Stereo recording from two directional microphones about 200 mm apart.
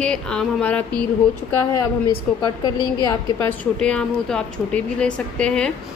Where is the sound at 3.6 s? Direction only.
5° left (ahead or behind).